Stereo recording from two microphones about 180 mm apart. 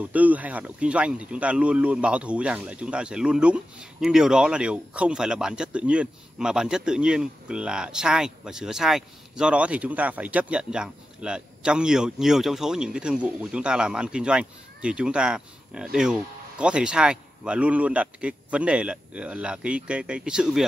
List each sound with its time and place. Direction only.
0.0 s speech: 10° right (ahead or behind)